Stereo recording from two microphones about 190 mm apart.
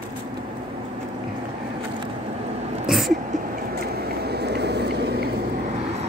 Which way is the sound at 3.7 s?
55° right (ahead or behind).